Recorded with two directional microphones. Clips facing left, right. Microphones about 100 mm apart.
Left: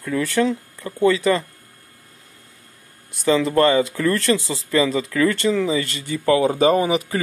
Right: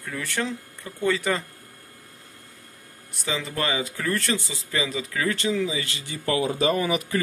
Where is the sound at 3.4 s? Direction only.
85° left; by 6.2 s 55° left (ahead or behind).